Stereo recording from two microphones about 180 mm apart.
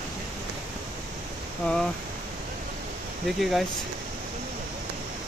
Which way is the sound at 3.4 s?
Centre (ahead or behind).